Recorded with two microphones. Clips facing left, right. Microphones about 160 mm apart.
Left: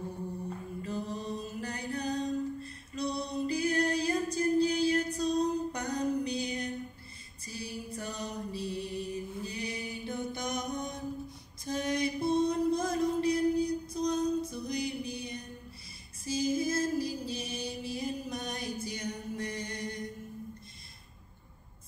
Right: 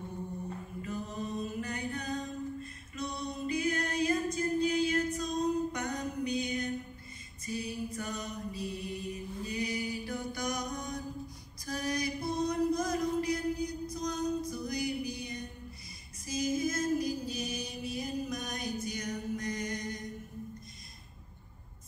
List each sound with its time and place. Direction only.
0.8 s mantra: 35° left (ahead or behind)
11.6 s music: 25° left (ahead or behind)